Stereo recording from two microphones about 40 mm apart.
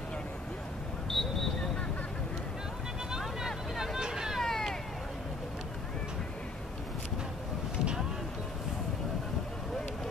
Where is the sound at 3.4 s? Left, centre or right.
Centre.